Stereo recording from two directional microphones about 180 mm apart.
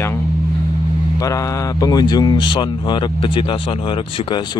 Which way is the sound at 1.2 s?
20° left (ahead or behind).